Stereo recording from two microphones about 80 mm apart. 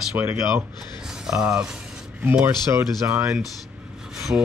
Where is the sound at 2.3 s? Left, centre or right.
Right.